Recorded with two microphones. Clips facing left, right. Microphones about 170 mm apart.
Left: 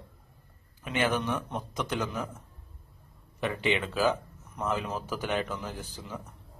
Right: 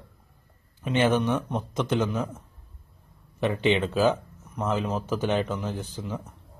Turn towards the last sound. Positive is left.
turn(degrees=-25)  # may be behind; listen again after turning